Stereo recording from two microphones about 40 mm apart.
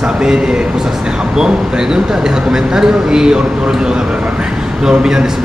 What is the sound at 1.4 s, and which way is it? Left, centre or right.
A man's voice, centre.